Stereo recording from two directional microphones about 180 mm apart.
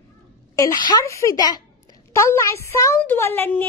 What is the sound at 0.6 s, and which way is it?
Speech, 20° left (ahead or behind).